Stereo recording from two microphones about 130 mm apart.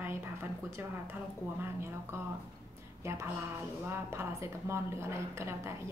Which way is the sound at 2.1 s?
20° right (ahead or behind).